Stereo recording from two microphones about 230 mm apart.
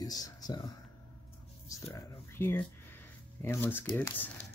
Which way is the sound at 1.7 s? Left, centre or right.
Centre.